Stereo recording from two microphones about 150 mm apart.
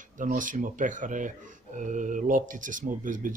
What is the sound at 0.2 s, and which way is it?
Speech, 60° right (ahead or behind).